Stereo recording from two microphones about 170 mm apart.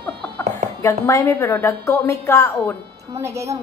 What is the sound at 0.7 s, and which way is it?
A woman's voice, 20° left (ahead or behind).